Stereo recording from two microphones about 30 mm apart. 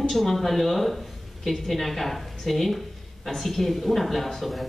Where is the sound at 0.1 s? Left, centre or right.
Centre.